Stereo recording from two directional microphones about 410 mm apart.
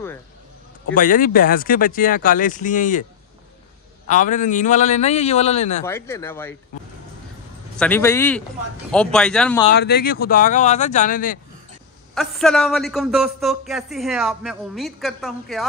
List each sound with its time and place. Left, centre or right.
0.9 s speech: centre
4.1 s a man's voice: centre
7.7 s a man's voice: centre
9.8 s speech: left
12.1 s a man's voice: centre